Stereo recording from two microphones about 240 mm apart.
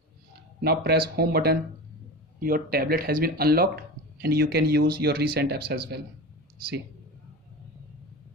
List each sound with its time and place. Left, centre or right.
0.6 s a man's voice: right